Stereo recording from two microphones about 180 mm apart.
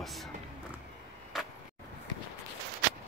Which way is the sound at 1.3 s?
Centre (ahead or behind).